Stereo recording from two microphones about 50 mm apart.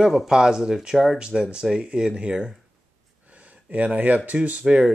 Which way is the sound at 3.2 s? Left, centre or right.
Right.